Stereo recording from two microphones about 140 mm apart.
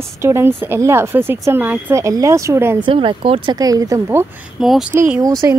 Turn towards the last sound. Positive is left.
turn(degrees=-20)  # may be behind; listen again after turning